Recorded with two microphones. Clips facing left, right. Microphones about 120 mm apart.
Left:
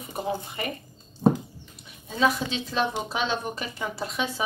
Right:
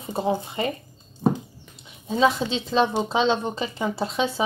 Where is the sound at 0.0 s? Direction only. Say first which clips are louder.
Right 5 dB; 25° right (ahead or behind).